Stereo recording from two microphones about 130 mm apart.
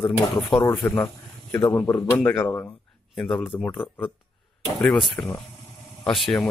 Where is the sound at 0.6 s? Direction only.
15° left (ahead or behind).